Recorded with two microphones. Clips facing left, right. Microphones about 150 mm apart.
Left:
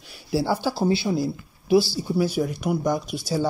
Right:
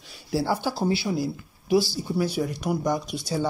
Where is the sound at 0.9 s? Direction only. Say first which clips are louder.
Left 3 dB; 25° left (ahead or behind).